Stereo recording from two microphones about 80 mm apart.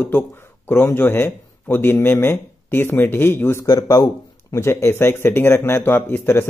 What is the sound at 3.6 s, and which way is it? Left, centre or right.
Speech, left.